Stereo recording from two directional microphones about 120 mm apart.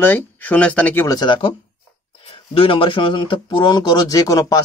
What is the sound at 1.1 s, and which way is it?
Speech, 40° left (ahead or behind).